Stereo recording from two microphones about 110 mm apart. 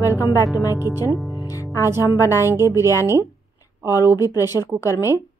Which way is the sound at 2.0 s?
30° left (ahead or behind).